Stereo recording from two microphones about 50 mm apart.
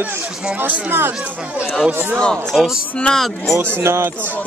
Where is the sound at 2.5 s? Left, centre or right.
Centre.